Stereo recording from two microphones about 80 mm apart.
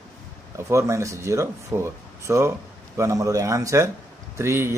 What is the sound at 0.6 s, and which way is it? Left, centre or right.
Speech, right.